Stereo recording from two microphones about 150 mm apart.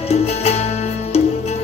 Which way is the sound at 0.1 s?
45° left (ahead or behind).